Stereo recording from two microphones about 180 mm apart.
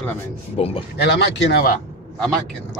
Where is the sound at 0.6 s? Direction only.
35° left (ahead or behind).